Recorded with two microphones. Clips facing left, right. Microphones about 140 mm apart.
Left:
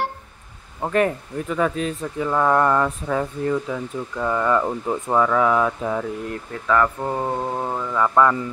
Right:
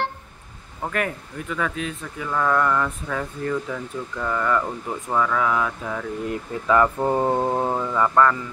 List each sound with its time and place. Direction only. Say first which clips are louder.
0.8 s speech: left 6 dB; 30° left (ahead or behind)
6.2 s speech: right 2 dB; 10° right (ahead or behind)
8.1 s a man's voice: left 2 dB; 10° left (ahead or behind)